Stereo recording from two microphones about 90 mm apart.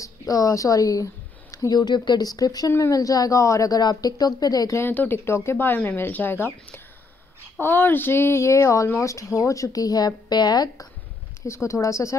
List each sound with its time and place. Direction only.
0.0 s speech: 40° left (ahead or behind)
4.7 s speech: 25° left (ahead or behind); by 10.9 s 50° left (ahead or behind)
11.4 s speech: 30° left (ahead or behind)